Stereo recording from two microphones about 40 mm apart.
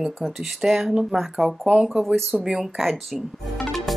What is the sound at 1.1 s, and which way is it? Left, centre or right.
Speech, centre.